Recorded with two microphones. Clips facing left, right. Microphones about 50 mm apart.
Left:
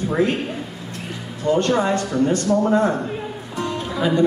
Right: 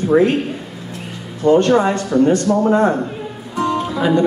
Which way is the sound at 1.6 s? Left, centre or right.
Centre.